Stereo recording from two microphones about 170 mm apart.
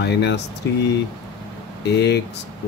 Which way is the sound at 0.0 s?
85° left.